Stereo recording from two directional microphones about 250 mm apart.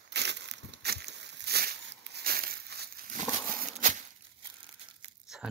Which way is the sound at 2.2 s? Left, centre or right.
Right.